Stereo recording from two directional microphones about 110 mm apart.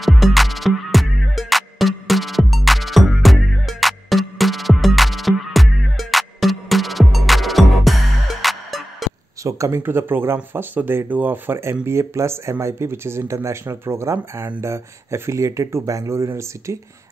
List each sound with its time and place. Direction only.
0.0 s music: centre (ahead or behind)
9.4 s speech: 30° right (ahead or behind)